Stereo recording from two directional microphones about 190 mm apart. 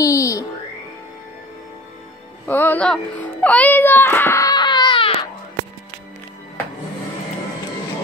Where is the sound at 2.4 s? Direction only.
10° left (ahead or behind); by 5.1 s 25° left (ahead or behind).